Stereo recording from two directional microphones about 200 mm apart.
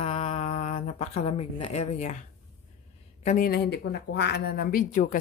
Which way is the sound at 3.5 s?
55° left (ahead or behind).